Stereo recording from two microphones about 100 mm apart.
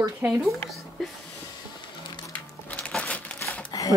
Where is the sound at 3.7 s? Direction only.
40° left (ahead or behind).